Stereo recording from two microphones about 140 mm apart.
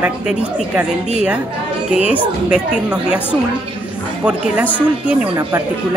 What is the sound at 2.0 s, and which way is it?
Speech, 10° right (ahead or behind).